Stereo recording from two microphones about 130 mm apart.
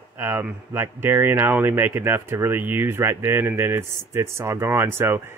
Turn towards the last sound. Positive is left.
turn(degrees=-15)  # may be behind; listen again after turning